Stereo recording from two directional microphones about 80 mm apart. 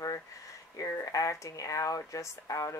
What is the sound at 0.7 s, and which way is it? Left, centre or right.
Speech, left.